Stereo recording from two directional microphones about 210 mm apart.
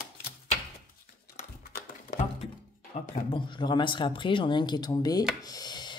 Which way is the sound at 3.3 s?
20° left (ahead or behind).